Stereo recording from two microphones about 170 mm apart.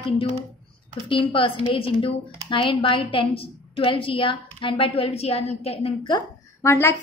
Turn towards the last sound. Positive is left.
turn(degrees=15)  # may be behind; listen again after turning